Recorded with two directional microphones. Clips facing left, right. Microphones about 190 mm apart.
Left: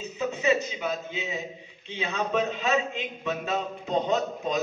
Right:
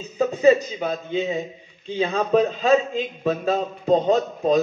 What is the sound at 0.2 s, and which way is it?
A man's voice, 35° right (ahead or behind).